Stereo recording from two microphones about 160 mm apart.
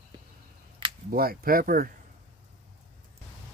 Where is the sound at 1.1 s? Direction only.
65° right (ahead or behind).